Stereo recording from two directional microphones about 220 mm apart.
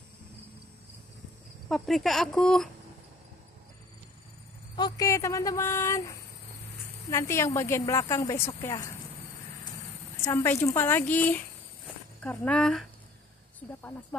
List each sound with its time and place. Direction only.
1.7 s speech: centre (ahead or behind)
4.7 s speech: 15° left (ahead or behind)
10.2 s speech: 10° left (ahead or behind)